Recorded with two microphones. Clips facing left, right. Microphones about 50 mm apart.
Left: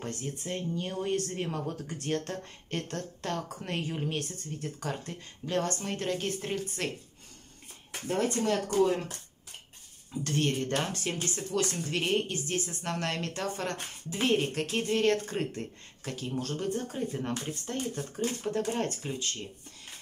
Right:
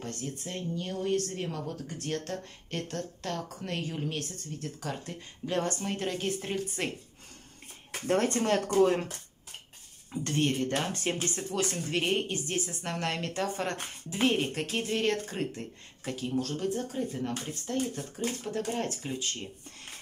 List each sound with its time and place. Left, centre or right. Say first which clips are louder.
0.0 s speech: left 1 dB; centre
2.0 s speech: left 1 dB; centre
8.1 s speech: right 3 dB; right
8.5 s speech: right 2 dB; right
10.4 s a woman's voice: right 2 dB; centre
10.9 s speech: right 2 dB; right
11.5 s a woman's voice: left 1 dB; centre
16.3 s speech: right 2 dB; centre